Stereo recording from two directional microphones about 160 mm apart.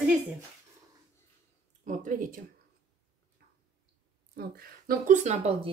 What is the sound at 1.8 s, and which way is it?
Speech, 55° right (ahead or behind).